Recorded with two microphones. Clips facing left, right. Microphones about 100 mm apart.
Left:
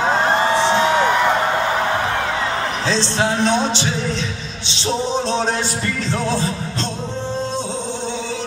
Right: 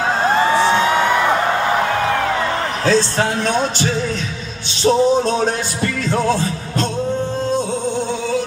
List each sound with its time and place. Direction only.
2.9 s speech: 50° right (ahead or behind)